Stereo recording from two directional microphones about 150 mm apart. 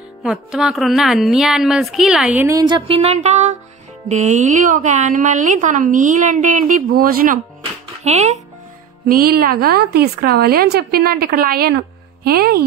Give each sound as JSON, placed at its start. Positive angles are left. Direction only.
{"t": 0.2, "sound": "a woman's voice", "side_deg": -5}
{"t": 2.6, "sound": "a woman's voice", "side_deg": -35}
{"t": 8.0, "sound": "a child's voice", "side_deg": -50}
{"t": 9.0, "sound": "a woman's voice", "side_deg": -85}